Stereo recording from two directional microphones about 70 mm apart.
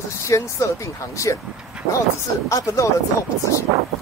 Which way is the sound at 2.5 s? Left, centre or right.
Left.